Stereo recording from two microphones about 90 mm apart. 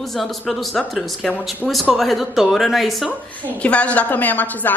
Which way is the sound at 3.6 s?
15° left (ahead or behind).